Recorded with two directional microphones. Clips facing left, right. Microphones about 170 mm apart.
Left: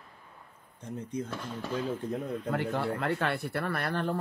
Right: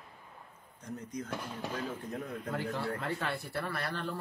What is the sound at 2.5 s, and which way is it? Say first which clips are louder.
Speech: left 4 dB; 60° left (ahead or behind).